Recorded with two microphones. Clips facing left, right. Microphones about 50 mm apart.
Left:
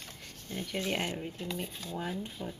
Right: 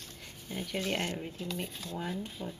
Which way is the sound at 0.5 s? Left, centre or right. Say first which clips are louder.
Even; centre.